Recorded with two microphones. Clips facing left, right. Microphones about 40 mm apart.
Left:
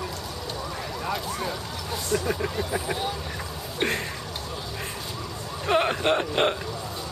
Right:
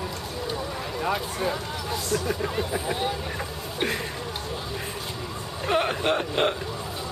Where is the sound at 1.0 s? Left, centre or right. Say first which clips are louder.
Right 4 dB; centre.